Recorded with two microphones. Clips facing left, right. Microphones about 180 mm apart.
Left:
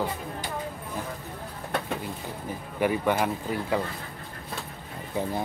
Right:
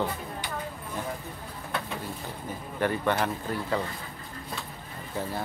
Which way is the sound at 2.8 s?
10° left (ahead or behind).